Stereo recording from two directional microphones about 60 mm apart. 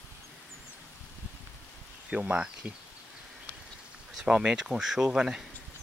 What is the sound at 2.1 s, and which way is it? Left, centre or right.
Speech, centre.